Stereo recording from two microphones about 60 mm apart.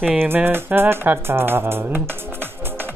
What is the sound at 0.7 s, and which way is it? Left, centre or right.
Music, right.